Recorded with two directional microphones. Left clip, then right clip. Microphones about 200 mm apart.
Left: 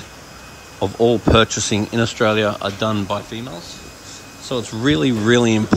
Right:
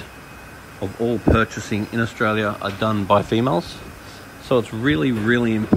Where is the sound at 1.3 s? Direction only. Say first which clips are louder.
Left 4 dB; 10° left (ahead or behind).